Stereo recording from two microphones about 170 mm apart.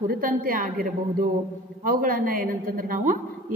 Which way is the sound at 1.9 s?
55° right (ahead or behind).